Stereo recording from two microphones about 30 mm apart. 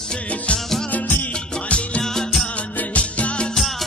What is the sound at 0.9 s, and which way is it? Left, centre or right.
Music, left.